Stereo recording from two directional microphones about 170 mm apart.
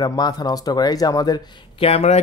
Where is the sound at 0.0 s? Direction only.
25° left (ahead or behind).